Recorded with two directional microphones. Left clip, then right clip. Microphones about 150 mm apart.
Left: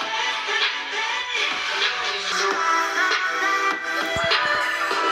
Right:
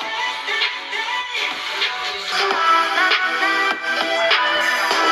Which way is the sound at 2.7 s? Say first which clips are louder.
Right 5 dB; 50° right (ahead or behind).